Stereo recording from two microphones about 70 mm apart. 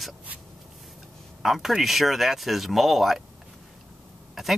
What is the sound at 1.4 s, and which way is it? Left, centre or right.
Speech, centre.